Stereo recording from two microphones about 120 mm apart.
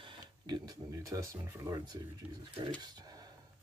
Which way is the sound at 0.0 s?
40° right (ahead or behind).